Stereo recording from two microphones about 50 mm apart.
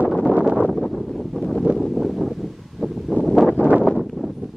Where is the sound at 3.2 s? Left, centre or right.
Centre.